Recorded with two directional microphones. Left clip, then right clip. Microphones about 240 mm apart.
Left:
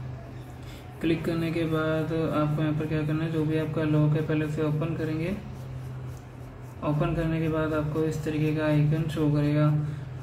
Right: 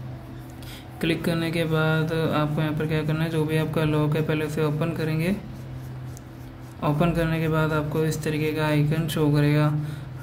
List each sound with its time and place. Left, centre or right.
1.0 s mantra: right
6.8 s mantra: right